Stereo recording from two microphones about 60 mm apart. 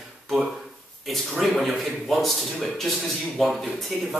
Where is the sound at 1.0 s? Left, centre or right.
Centre.